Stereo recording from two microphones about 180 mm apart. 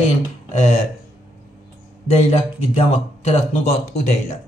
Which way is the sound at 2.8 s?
35° left (ahead or behind).